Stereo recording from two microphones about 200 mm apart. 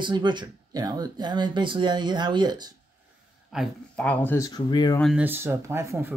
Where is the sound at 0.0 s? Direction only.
25° right (ahead or behind).